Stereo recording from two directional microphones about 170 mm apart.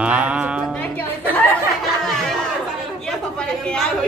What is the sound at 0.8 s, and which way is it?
Speech, 10° left (ahead or behind).